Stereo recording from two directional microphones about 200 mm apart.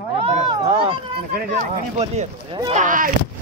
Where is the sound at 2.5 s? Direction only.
20° right (ahead or behind).